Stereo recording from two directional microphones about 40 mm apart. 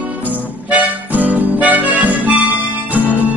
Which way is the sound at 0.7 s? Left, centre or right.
Right.